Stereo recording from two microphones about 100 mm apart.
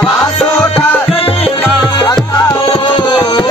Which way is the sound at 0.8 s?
65° left (ahead or behind).